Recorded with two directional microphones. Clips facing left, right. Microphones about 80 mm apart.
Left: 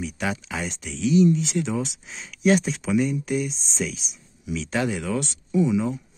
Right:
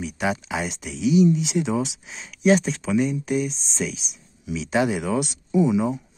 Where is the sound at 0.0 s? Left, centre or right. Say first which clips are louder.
Right 3 dB; centre.